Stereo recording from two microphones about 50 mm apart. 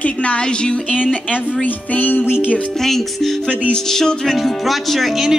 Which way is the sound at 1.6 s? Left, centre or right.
Left.